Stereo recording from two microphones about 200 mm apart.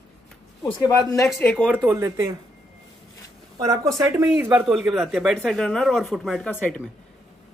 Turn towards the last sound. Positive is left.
turn(degrees=10)  # may be behind; listen again after turning